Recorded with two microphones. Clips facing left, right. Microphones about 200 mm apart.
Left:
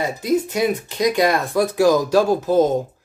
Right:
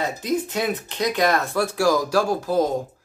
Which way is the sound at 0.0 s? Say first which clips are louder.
Left 4 dB; 10° left (ahead or behind).